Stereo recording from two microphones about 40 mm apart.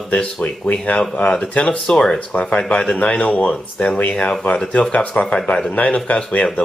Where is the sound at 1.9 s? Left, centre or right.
Centre.